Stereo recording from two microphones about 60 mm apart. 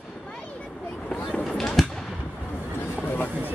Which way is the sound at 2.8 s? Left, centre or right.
Left.